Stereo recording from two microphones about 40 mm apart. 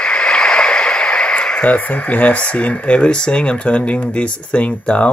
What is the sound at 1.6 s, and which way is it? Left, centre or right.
Speech, left.